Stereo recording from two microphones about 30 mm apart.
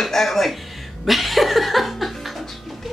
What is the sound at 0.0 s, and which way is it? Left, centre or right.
Speech, centre.